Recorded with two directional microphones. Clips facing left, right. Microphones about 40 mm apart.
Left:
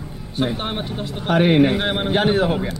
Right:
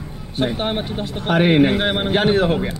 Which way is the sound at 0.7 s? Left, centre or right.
Right.